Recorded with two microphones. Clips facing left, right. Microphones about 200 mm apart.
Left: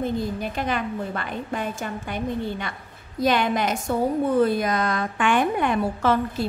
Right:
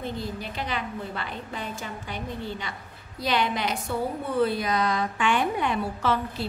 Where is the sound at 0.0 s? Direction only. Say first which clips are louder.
Left 7 dB; 50° left (ahead or behind).